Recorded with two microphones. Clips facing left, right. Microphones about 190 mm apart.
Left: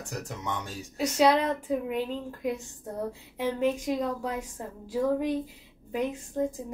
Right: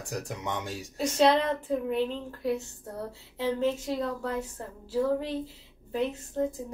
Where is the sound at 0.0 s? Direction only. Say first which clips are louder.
Right 1 dB; 15° right (ahead or behind).